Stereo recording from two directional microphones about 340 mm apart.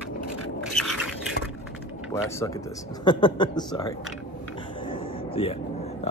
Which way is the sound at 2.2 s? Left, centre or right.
Centre.